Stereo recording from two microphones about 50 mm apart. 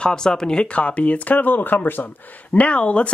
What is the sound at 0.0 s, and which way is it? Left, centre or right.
Speech, centre.